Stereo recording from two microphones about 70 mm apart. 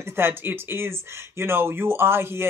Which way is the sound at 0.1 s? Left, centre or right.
Right.